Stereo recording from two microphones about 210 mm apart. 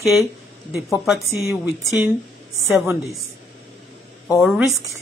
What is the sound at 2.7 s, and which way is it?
Speech, 15° right (ahead or behind).